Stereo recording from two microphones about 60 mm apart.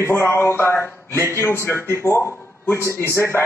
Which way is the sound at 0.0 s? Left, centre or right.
Left.